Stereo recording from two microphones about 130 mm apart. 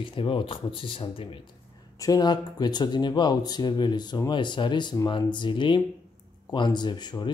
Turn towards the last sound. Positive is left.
turn(degrees=35)  # may be behind; listen again after turning